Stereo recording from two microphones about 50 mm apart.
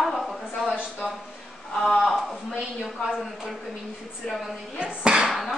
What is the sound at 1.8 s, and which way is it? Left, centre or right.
Speech, centre.